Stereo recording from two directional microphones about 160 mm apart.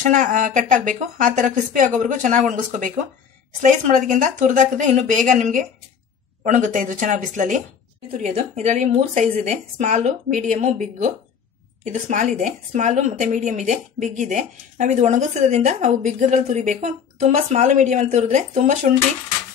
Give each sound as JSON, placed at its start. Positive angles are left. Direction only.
{"t": 0.0, "sound": "a woman's voice", "side_deg": -55}